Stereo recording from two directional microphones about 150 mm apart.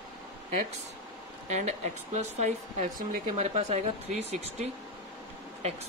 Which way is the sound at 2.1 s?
50° right (ahead or behind).